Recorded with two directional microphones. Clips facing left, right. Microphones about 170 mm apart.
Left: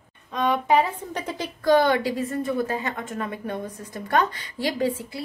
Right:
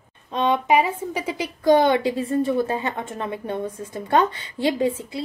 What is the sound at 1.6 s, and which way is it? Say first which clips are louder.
A woman's voice: right 2 dB; 20° right (ahead or behind).